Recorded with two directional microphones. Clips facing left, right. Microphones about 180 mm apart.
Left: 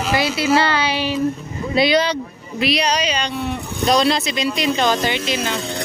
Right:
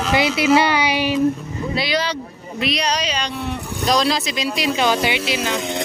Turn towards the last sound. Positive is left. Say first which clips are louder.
# even
turn(degrees=-10)  # may be behind; listen again after turning